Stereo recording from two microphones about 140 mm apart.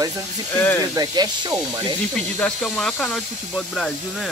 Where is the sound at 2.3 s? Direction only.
5° left (ahead or behind).